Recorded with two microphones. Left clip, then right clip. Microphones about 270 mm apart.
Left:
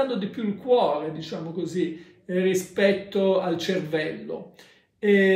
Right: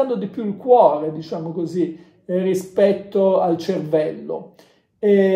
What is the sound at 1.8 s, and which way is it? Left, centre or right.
Speech, centre.